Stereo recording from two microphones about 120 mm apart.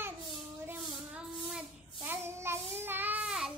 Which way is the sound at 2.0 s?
20° right (ahead or behind).